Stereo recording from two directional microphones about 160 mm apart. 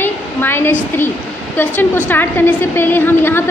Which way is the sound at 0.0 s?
15° left (ahead or behind).